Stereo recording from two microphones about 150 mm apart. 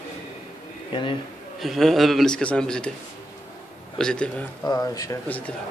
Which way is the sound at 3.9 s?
5° left (ahead or behind).